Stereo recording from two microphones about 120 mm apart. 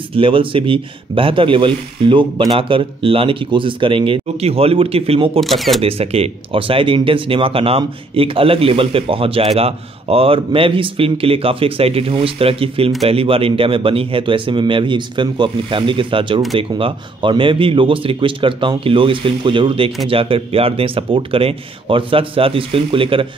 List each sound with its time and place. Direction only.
0.1 s speech: 45° right (ahead or behind)
5.4 s speech: centre (ahead or behind)
5.8 s speech: 55° right (ahead or behind)